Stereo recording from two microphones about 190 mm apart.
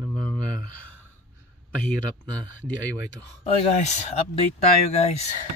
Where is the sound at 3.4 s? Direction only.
35° left (ahead or behind).